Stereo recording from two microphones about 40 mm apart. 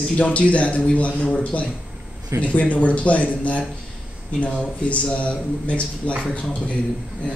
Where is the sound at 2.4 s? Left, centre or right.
Left.